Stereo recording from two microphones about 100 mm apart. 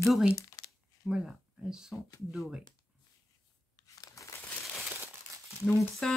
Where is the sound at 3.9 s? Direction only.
35° left (ahead or behind).